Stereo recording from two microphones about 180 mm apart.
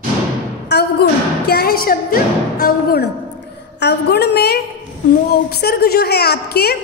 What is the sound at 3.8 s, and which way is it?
A woman's voice, 70° left (ahead or behind).